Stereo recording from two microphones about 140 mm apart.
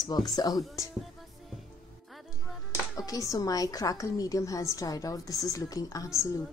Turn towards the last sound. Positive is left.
turn(degrees=20)  # may be behind; listen again after turning